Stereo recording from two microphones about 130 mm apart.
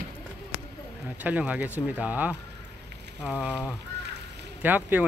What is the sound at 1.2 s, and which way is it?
Speech, 10° right (ahead or behind).